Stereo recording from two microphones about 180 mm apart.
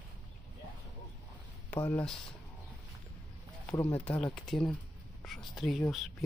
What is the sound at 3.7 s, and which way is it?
Speech, 15° left (ahead or behind).